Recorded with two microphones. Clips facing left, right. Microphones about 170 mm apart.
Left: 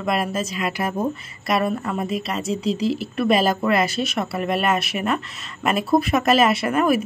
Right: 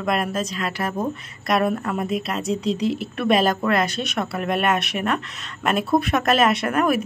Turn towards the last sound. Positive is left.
turn(degrees=5)  # may be behind; listen again after turning